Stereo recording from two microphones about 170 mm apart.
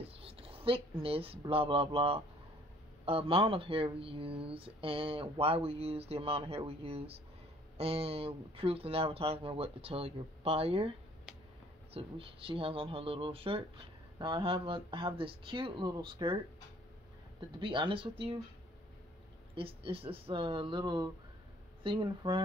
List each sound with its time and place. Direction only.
0.0 s speech: 35° right (ahead or behind)
17.6 s speech: 30° right (ahead or behind)
19.5 s speech: 30° right (ahead or behind)